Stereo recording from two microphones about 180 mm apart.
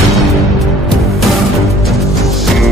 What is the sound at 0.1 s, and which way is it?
Music, centre (ahead or behind).